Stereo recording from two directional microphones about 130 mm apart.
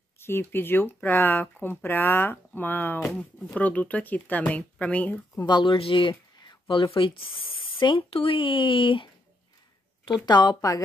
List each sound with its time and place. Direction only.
0.2 s speech: 15° left (ahead or behind)
3.0 s speech: 5° left (ahead or behind)
5.5 s speech: 40° left (ahead or behind)
10.2 s speech: 35° left (ahead or behind)